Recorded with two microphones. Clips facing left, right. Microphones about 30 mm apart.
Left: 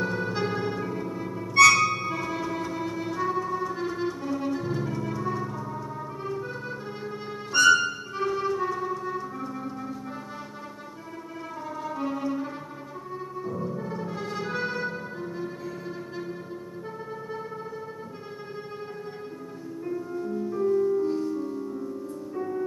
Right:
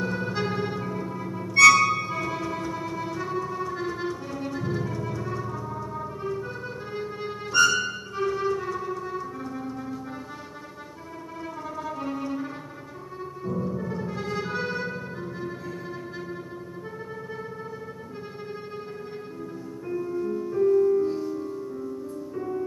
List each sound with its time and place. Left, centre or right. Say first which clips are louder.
0.0 s music: even; centre
11.6 s music: left 2 dB; centre
20.2 s music: right 3 dB; centre
21.1 s music: left 1 dB; centre